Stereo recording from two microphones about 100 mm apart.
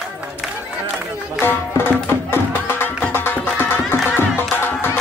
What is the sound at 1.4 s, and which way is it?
Music, 20° left (ahead or behind).